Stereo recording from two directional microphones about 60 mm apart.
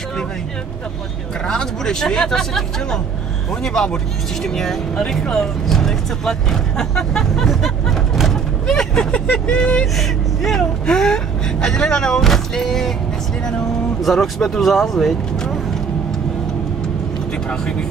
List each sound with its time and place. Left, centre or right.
1.5 s speech: centre
9.9 s speech: centre
14.0 s speech: centre
17.5 s speech: centre